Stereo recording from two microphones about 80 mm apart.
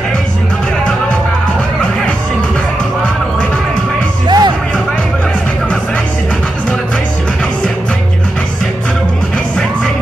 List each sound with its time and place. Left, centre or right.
4.3 s music: right